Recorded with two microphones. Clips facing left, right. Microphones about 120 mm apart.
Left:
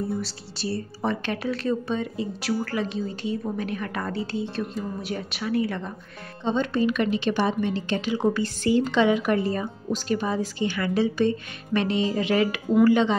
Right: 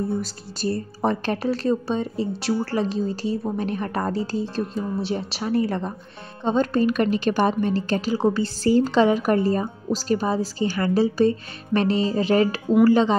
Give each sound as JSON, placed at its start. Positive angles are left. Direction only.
{"t": 0.2, "sound": "a woman's voice", "side_deg": -45}